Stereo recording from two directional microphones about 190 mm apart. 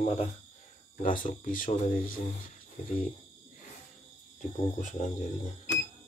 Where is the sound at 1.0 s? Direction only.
45° left (ahead or behind).